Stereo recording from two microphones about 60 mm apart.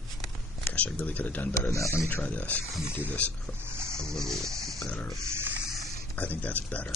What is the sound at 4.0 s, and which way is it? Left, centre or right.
Dog, centre.